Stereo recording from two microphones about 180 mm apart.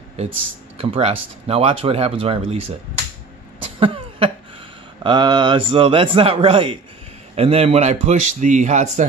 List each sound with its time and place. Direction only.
0.7 s speech: 30° right (ahead or behind)
3.8 s cough: 30° right (ahead or behind)
5.0 s a man's voice: 25° right (ahead or behind); by 9.0 s 40° right (ahead or behind)